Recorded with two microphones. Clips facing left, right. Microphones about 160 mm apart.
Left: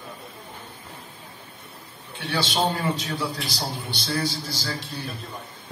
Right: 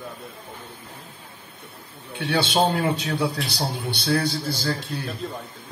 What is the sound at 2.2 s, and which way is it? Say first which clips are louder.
A man's voice: right 4 dB; 60° right (ahead or behind).